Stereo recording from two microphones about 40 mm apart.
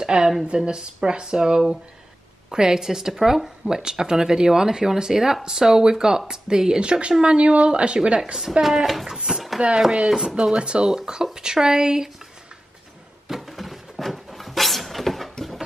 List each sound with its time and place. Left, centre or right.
0.0 s speech: centre
8.4 s speech: centre
9.6 s chopping: right
10.0 s speech: centre
13.3 s a sound: centre